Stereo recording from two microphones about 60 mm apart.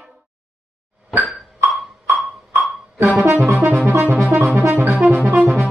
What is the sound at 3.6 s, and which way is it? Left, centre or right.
Music, right.